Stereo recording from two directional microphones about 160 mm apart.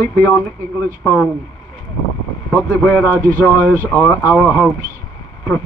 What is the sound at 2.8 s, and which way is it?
Speech, 5° left (ahead or behind).